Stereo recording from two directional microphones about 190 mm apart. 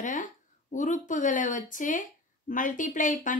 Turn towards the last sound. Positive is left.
turn(degrees=45)  # may be behind; listen again after turning